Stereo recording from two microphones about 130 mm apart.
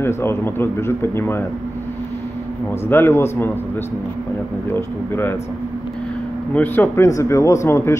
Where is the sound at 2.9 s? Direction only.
15° left (ahead or behind).